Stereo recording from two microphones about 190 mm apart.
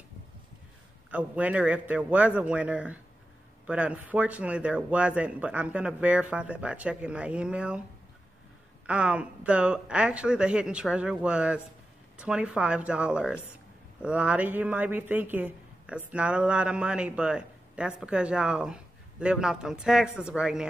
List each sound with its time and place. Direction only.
1.1 s speech: 5° right (ahead or behind)
8.8 s speech: 5° right (ahead or behind)